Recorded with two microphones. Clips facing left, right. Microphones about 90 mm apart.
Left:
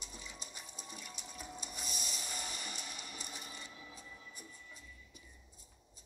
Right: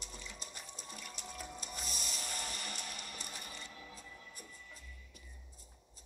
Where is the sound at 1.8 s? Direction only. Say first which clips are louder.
Right 2 dB; 5° left (ahead or behind).